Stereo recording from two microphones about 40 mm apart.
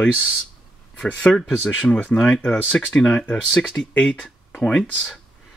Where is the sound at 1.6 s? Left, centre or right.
Centre.